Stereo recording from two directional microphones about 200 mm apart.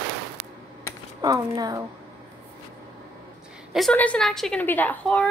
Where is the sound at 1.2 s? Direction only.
20° right (ahead or behind).